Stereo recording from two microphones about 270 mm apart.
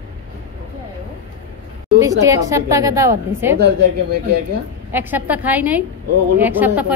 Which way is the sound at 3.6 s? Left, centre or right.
Right.